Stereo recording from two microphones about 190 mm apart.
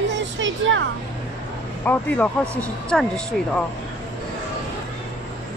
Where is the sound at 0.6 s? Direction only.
85° right.